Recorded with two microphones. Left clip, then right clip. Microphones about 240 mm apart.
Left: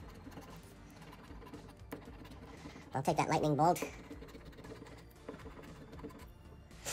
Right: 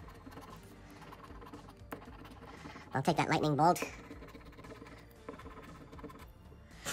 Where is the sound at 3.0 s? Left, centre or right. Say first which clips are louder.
Right 1 dB; centre.